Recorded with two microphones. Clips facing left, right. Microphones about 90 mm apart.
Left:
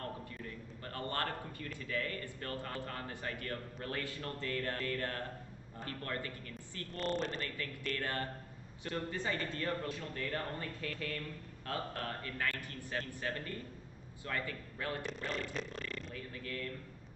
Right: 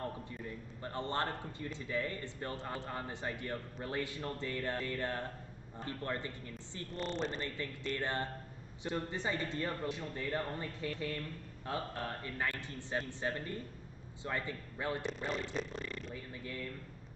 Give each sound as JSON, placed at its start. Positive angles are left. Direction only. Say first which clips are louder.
{"t": 0.0, "sound": "a man's voice", "louder": "right 2 dB", "side_deg": -20}
{"t": 15.0, "sound": "speech", "louder": "right 2 dB", "side_deg": 0}